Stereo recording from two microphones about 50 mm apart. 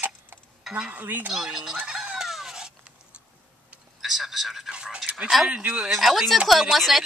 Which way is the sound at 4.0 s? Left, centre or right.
Centre.